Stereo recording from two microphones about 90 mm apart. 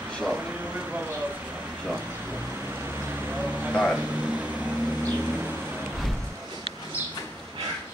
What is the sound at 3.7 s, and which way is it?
Speech, 5° left (ahead or behind).